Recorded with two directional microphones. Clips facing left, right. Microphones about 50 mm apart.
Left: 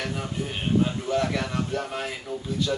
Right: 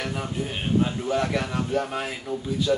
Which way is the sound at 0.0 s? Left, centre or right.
Centre.